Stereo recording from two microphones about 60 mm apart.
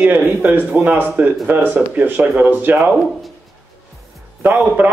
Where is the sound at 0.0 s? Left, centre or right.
Right.